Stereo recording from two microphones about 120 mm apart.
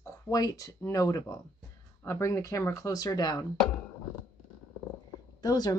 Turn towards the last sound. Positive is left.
turn(degrees=35)  # may be behind; listen again after turning